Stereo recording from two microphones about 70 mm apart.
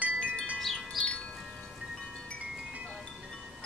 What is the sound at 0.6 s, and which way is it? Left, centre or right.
Wind chime, centre.